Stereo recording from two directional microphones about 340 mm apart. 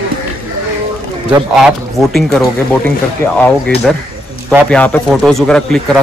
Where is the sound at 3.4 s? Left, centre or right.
Centre.